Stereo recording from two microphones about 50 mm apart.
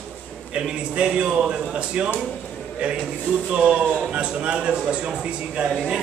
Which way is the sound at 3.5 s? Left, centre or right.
Right.